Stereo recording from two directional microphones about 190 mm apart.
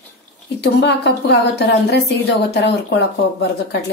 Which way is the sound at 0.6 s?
60° left (ahead or behind).